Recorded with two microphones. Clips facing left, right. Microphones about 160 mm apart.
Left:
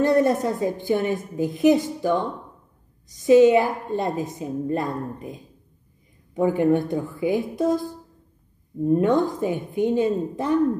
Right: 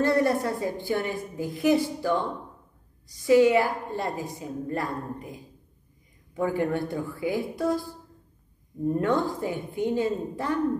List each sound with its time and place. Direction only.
0.0 s a woman's voice: 20° left (ahead or behind)